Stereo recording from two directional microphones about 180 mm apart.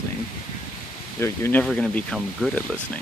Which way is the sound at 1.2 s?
10° left (ahead or behind).